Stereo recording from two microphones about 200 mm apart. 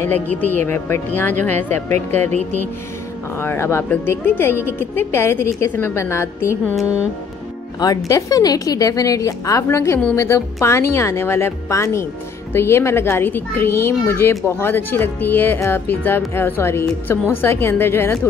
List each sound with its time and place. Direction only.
0.0 s speech: 10° left (ahead or behind)
2.3 s music: 35° right (ahead or behind)
3.3 s speech: 10° left (ahead or behind)
6.7 s speech: centre (ahead or behind)
7.8 s speech: 15° left (ahead or behind)